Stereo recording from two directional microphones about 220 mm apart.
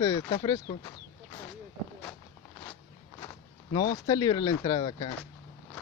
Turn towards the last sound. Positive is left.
turn(degrees=20)  # may be behind; listen again after turning